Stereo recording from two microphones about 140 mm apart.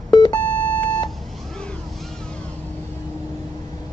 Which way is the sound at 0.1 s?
30° left (ahead or behind).